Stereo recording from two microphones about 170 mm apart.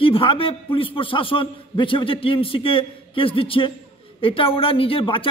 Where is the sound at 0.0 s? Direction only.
30° left (ahead or behind).